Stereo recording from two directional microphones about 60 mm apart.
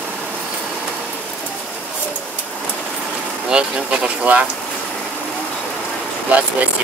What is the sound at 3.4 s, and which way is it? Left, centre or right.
Speech, centre.